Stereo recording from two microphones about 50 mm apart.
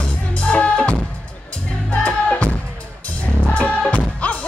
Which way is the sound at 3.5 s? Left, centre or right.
Left.